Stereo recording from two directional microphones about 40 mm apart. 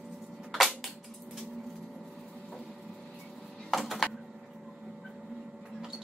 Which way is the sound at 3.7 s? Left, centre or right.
Centre.